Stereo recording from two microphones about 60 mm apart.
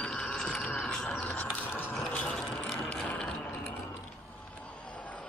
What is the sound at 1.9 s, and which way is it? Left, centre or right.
Vehicle, centre.